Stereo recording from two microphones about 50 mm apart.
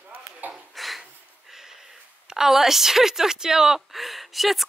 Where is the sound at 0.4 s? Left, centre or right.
Right.